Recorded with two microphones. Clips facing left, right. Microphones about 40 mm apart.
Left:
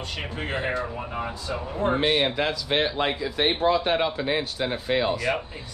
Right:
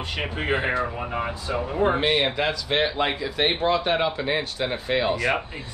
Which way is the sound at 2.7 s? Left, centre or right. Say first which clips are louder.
Right 1 dB; centre.